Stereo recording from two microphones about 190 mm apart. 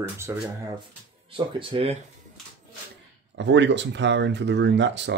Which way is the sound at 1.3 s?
30° right (ahead or behind).